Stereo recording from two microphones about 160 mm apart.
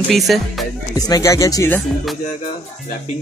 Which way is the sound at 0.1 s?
Centre (ahead or behind).